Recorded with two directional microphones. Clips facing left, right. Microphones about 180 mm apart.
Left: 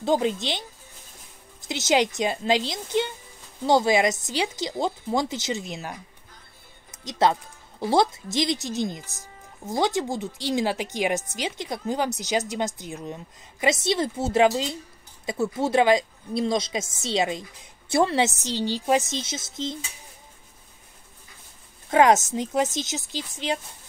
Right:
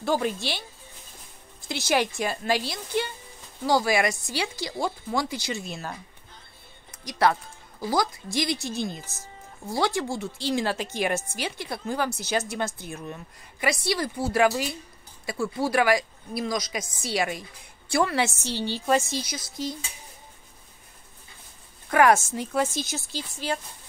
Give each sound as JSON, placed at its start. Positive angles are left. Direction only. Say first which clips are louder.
{"t": 0.0, "sound": "a woman's voice", "louder": "left 3 dB", "side_deg": 20}
{"t": 21.9, "sound": "a woman's voice", "louder": "left 2 dB", "side_deg": 20}